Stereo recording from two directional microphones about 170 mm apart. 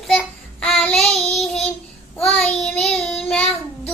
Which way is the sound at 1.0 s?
40° left (ahead or behind).